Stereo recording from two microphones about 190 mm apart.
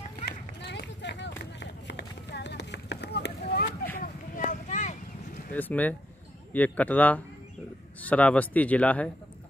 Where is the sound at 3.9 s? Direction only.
45° left (ahead or behind).